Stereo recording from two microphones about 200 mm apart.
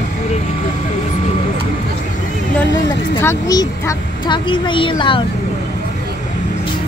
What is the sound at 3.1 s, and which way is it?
A woman's voice, 15° left (ahead or behind).